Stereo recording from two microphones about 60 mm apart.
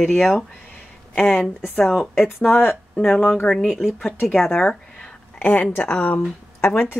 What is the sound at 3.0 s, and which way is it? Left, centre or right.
Speech, centre.